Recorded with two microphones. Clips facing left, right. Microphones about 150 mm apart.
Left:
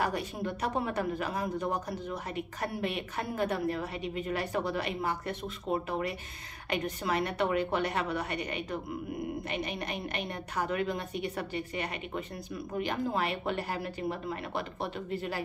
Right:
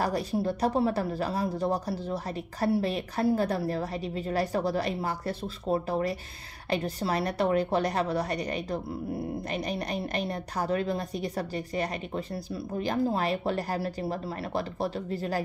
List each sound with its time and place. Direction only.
0.0 s speech: 35° right (ahead or behind)